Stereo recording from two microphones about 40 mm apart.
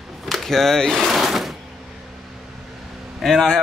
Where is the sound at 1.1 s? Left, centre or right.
Centre.